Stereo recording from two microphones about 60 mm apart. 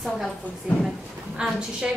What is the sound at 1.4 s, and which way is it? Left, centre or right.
Speech, centre.